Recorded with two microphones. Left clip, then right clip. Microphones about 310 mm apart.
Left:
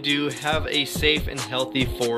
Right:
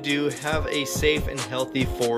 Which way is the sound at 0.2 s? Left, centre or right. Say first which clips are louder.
Left 1 dB; centre.